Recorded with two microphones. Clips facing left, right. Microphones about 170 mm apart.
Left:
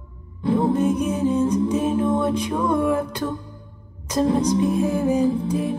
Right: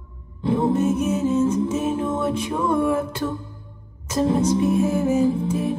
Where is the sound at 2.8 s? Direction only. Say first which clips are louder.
Even; 25° right (ahead or behind).